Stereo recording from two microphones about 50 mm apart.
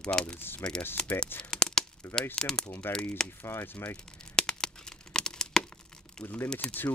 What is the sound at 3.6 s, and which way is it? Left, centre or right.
Speech, left.